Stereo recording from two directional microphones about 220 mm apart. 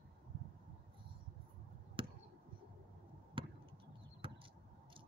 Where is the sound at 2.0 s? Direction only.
25° right (ahead or behind).